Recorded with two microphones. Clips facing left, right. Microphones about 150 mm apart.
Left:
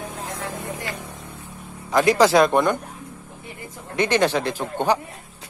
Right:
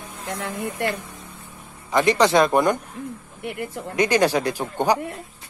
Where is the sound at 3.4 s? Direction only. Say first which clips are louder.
Right 11 dB; 75° right (ahead or behind).